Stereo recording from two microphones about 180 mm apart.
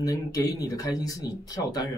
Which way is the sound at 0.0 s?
20° left (ahead or behind).